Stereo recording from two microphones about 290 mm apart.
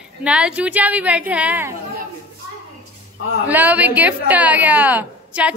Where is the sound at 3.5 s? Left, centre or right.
Centre.